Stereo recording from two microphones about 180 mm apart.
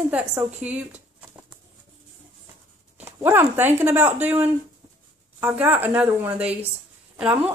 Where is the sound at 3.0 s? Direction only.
10° right (ahead or behind).